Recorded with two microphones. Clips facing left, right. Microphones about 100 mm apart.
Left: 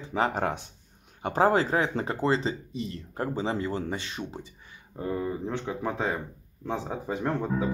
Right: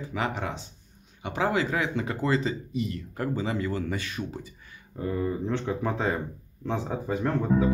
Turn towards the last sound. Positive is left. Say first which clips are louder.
# right 3 dB
turn(degrees=15)  # may be behind; listen again after turning